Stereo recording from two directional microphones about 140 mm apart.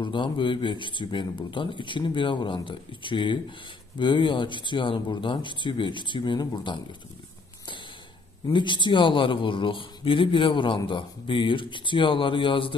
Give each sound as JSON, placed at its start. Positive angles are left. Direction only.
{"t": 0.0, "sound": "speech", "side_deg": 35}
{"t": 8.5, "sound": "speech", "side_deg": 35}